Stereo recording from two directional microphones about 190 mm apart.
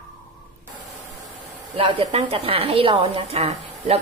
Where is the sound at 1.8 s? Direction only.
30° right (ahead or behind).